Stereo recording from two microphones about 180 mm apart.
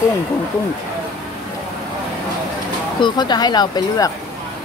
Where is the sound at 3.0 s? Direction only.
25° left (ahead or behind).